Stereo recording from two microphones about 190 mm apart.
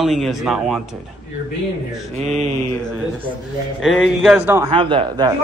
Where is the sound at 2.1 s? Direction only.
35° right (ahead or behind).